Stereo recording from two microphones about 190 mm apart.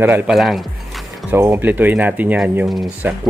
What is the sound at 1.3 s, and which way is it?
Speech, 10° right (ahead or behind).